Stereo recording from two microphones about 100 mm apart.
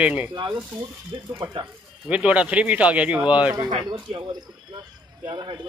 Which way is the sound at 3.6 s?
50° right (ahead or behind).